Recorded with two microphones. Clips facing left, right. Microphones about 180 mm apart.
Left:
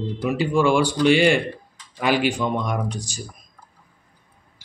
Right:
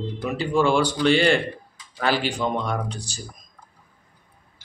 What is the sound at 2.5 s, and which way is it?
Speech, 10° left (ahead or behind).